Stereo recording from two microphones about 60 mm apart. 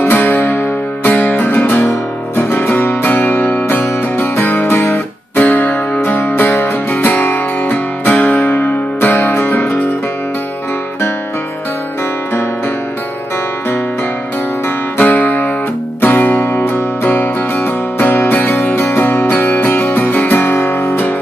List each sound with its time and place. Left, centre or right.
0.0 s music: left
15.0 s music: left